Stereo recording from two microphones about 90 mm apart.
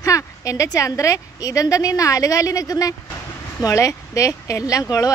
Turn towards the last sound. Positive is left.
turn(degrees=40)  # may be behind; listen again after turning